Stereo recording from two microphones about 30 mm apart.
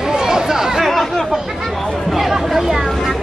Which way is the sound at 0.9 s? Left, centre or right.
Centre.